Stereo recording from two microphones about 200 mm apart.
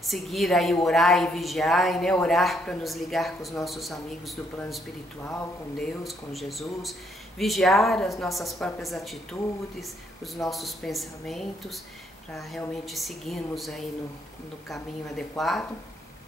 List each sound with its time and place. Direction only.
0.0 s a woman's voice: centre (ahead or behind)
10.5 s a woman's voice: centre (ahead or behind)